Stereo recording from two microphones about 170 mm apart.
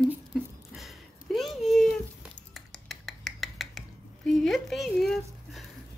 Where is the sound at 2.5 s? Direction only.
Centre (ahead or behind).